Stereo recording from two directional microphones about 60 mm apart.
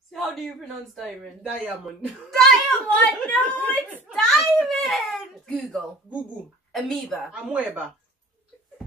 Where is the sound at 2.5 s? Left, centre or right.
Centre.